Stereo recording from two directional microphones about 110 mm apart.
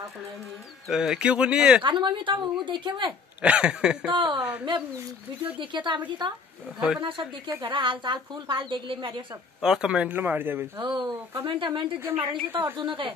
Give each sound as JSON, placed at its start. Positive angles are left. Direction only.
{"t": 0.8, "sound": "speech", "side_deg": -5}
{"t": 1.8, "sound": "a woman's voice", "side_deg": -45}
{"t": 3.4, "sound": "speech", "side_deg": -10}
{"t": 4.1, "sound": "a woman's voice", "side_deg": -50}
{"t": 4.4, "sound": "speech", "side_deg": -15}
{"t": 5.6, "sound": "a woman's voice", "side_deg": -45}
{"t": 9.6, "sound": "speech", "side_deg": -5}
{"t": 10.8, "sound": "a woman's voice", "side_deg": -50}